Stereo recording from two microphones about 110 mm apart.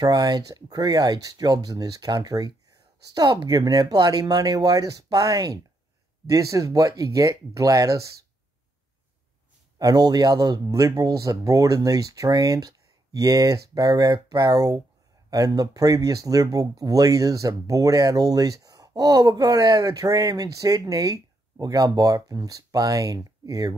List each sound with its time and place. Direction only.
0.0 s speech: 40° right (ahead or behind)
9.8 s speech: 35° right (ahead or behind)